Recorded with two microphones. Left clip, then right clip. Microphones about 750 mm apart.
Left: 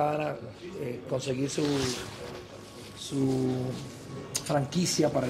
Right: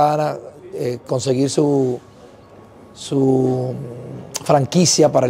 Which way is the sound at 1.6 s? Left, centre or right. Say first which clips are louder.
Right 12 dB; right.